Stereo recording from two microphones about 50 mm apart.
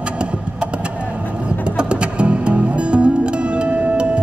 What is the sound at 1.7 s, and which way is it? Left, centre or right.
Music, right.